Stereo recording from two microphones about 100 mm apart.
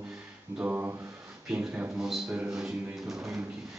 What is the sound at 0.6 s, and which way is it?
A man's voice, 20° right (ahead or behind).